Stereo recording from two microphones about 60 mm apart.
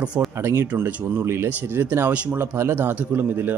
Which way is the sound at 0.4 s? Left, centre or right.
Right.